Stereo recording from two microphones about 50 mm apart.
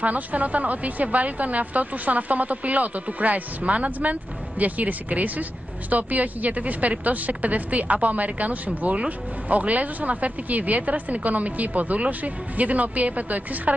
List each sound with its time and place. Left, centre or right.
0.0 s speech: right